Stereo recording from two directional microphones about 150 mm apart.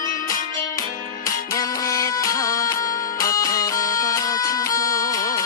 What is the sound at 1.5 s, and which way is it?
Music, 20° left (ahead or behind).